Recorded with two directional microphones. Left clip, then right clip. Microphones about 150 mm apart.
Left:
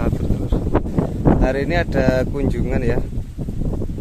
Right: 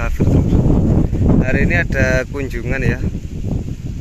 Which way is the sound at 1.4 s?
15° left (ahead or behind).